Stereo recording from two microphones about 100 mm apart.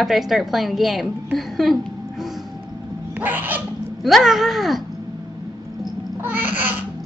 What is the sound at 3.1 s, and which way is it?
Cat, 20° right (ahead or behind).